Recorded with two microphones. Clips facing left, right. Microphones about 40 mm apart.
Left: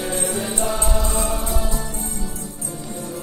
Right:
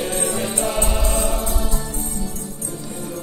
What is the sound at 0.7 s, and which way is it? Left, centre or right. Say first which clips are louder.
Music: right 1 dB; right.